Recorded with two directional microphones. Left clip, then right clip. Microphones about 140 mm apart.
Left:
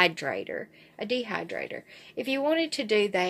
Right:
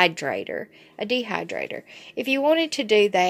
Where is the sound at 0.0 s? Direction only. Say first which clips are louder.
Right 4 dB; 35° right (ahead or behind).